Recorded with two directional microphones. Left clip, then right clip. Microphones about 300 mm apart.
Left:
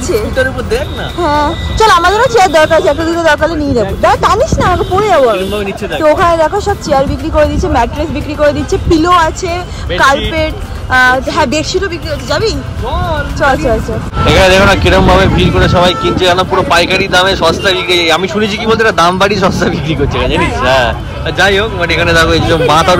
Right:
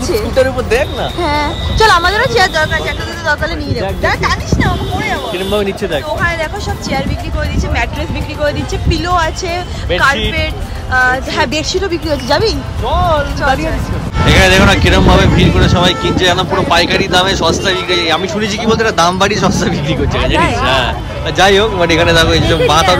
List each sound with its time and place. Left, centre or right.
1.2 s speech: centre
5.5 s speech: right
6.2 s speech: centre
14.2 s speech: centre